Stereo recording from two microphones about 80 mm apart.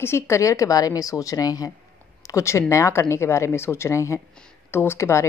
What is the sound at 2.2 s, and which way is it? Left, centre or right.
Speech, left.